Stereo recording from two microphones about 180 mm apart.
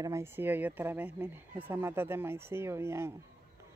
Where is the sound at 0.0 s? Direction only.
15° right (ahead or behind).